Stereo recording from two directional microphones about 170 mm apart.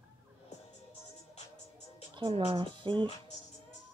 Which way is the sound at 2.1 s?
30° right (ahead or behind).